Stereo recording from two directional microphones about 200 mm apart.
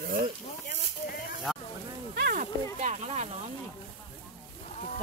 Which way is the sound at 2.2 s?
45° right (ahead or behind).